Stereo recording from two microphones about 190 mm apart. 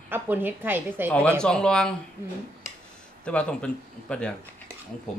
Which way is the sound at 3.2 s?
5° left (ahead or behind).